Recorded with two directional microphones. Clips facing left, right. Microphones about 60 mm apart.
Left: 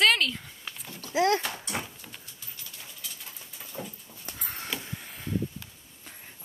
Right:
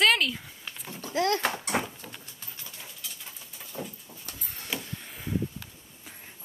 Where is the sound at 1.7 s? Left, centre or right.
Right.